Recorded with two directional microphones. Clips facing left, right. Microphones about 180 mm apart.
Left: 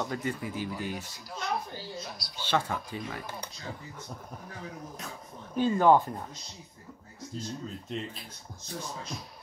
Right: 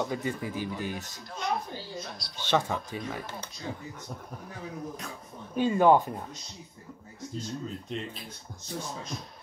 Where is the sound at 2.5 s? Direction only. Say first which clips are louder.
Right 2 dB; 20° right (ahead or behind).